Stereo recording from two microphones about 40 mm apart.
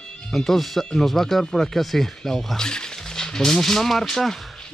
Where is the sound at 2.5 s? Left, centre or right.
Centre.